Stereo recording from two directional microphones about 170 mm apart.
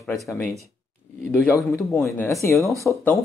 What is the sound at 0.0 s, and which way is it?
Speech, 5° left (ahead or behind).